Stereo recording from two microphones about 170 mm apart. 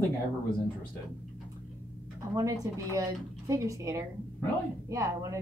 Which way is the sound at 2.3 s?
20° right (ahead or behind).